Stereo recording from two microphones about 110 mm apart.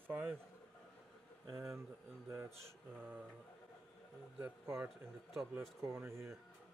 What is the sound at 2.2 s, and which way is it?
Speech, 25° right (ahead or behind).